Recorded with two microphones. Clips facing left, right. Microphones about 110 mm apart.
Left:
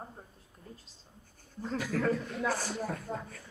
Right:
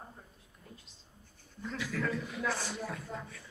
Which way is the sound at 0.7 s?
35° left (ahead or behind).